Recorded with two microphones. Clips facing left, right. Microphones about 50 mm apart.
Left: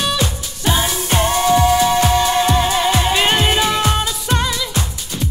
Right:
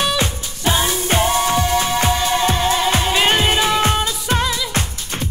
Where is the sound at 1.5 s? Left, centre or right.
Centre.